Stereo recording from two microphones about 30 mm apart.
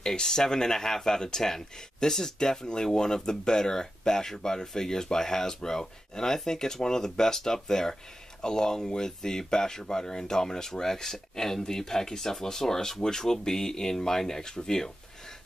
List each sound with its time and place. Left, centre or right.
0.0 s speech: centre